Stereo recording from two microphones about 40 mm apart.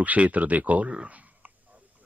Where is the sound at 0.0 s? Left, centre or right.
Right.